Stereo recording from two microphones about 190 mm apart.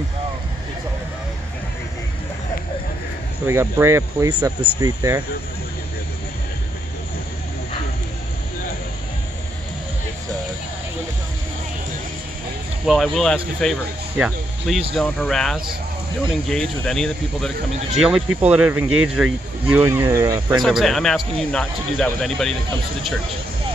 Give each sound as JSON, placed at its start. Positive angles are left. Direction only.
{"t": 3.4, "sound": "speech", "side_deg": -15}
{"t": 12.8, "sound": "speech", "side_deg": 0}
{"t": 20.6, "sound": "speech", "side_deg": 0}